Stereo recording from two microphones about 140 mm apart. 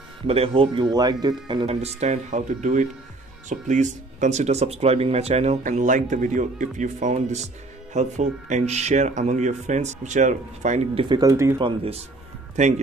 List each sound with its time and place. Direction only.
0.3 s speech: 45° right (ahead or behind)
1.7 s speech: 50° right (ahead or behind)
5.6 s speech: 65° right (ahead or behind)
11.0 s speech: 30° right (ahead or behind)
11.6 s speech: 45° right (ahead or behind)
12.5 s speech: 55° right (ahead or behind)